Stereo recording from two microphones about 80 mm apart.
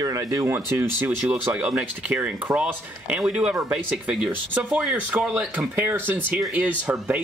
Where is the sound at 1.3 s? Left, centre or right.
Centre.